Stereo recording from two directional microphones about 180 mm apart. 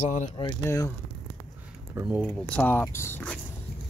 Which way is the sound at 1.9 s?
15° right (ahead or behind).